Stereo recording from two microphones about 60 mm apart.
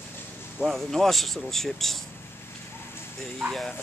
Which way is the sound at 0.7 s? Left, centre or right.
Centre.